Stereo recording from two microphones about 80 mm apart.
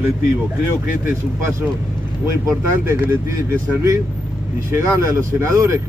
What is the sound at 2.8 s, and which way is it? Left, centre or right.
Speech, right.